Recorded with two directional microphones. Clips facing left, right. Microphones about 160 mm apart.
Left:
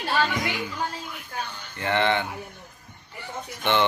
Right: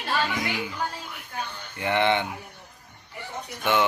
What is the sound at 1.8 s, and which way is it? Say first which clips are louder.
Speech: even; 15° right (ahead or behind).